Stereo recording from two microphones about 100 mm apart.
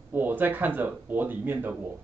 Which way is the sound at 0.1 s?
20° right (ahead or behind).